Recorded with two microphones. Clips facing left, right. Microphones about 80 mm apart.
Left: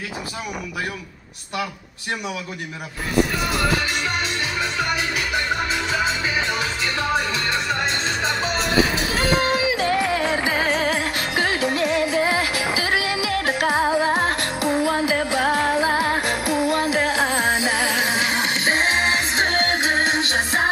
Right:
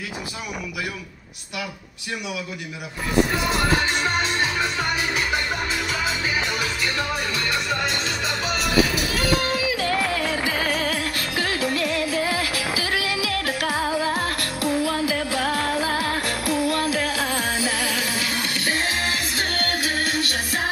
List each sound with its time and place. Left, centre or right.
7.4 s music: left